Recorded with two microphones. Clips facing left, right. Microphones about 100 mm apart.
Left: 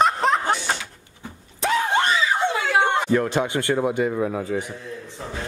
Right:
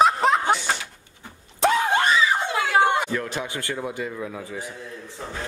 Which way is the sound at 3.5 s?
25° left (ahead or behind).